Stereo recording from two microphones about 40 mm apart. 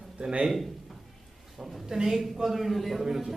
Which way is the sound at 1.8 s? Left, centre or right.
Centre.